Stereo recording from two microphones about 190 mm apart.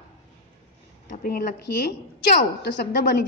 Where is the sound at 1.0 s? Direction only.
55° left (ahead or behind).